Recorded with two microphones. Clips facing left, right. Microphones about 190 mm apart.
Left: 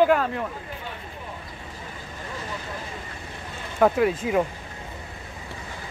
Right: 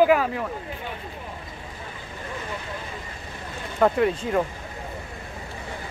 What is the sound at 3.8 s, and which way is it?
Speech, 5° left (ahead or behind).